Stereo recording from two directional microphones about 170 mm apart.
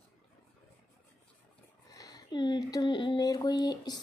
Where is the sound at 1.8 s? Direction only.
20° left (ahead or behind).